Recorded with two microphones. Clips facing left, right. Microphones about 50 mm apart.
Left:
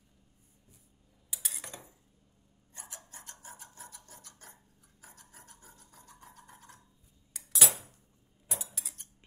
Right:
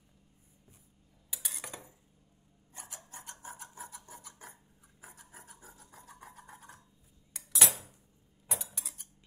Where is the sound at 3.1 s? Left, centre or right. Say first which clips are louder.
Right 3 dB; right.